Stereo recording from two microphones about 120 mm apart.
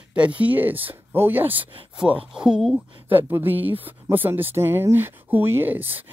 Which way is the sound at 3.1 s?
15° right (ahead or behind).